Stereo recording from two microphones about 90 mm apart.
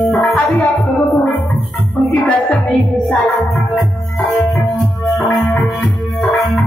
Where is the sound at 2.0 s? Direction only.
10° left (ahead or behind).